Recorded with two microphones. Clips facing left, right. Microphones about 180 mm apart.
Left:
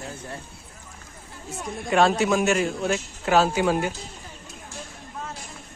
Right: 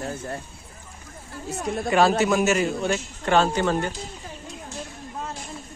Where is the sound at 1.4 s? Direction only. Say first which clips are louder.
Right 6 dB; 70° right (ahead or behind).